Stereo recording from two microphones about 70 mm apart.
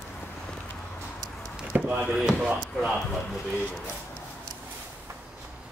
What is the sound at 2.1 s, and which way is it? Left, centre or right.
Speech, centre.